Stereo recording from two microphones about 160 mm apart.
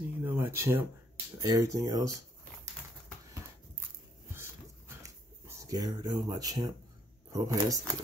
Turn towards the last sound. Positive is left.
turn(degrees=-25)  # may be behind; listen again after turning